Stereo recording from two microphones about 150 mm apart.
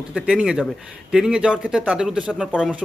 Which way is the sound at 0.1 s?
5° right (ahead or behind).